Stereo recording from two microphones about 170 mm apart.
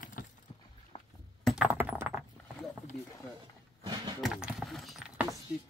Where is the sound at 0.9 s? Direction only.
35° left (ahead or behind).